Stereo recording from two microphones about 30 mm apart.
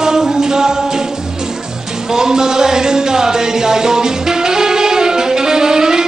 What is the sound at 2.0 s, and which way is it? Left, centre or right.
Music, right.